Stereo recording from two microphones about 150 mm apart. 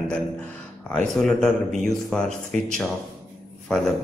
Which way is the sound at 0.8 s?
5° left (ahead or behind).